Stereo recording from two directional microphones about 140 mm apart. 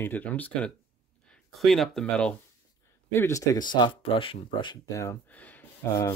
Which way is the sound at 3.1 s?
20° left (ahead or behind).